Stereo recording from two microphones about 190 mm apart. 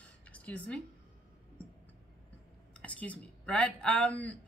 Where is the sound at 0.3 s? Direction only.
5° left (ahead or behind).